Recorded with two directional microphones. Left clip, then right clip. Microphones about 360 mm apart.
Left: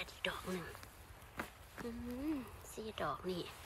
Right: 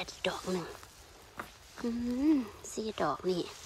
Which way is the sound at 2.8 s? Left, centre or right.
Centre.